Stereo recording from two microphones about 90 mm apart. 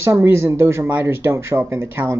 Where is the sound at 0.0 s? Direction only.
30° right (ahead or behind).